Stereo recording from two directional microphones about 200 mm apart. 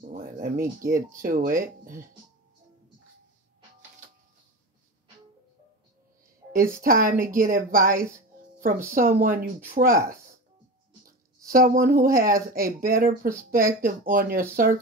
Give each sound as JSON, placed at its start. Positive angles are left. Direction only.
{"t": 0.0, "sound": "speech", "side_deg": -45}
{"t": 6.8, "sound": "speech", "side_deg": -45}
{"t": 11.5, "sound": "speech", "side_deg": -45}